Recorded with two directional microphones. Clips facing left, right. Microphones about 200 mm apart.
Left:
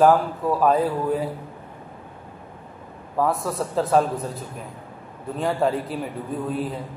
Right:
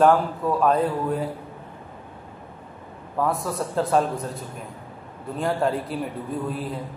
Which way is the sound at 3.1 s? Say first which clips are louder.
Left 2 dB; centre (ahead or behind).